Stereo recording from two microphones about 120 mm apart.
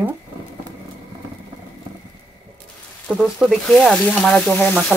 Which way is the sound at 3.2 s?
5° right (ahead or behind).